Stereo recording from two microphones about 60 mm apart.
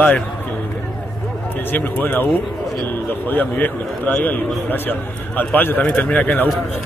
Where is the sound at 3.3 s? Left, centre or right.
Left.